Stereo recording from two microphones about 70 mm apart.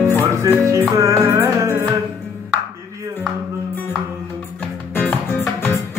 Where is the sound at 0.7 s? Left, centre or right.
Right.